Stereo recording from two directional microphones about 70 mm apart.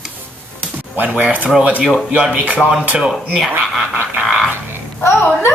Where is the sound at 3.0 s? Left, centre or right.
Centre.